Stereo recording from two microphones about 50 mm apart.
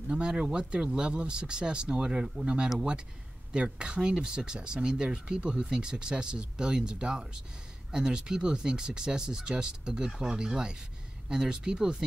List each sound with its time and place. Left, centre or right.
0.1 s speech: centre